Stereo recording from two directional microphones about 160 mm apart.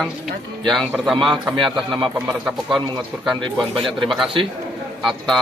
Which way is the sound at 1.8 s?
Centre (ahead or behind).